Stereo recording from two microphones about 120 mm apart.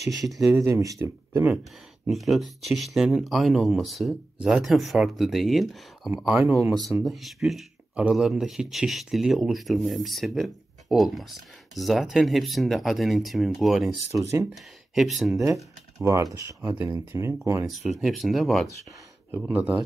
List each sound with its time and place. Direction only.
0.4 s speech: 25° right (ahead or behind)
2.0 s speech: centre (ahead or behind)
7.0 s speech: centre (ahead or behind)
15.4 s speech: 25° right (ahead or behind)
17.6 s speech: centre (ahead or behind)
19.3 s speech: 15° right (ahead or behind)